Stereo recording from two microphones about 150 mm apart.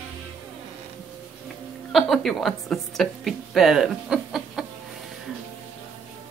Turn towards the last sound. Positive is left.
turn(degrees=0)  # may be behind; listen again after turning